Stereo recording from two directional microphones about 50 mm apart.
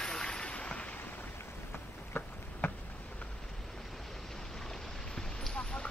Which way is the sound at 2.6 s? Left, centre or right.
Left.